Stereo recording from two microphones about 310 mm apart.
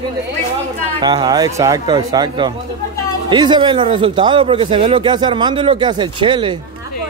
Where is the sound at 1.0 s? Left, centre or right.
Centre.